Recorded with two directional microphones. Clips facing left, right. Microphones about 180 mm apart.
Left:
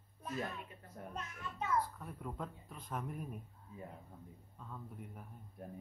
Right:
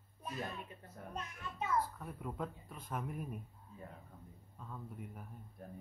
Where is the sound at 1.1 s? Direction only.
10° right (ahead or behind).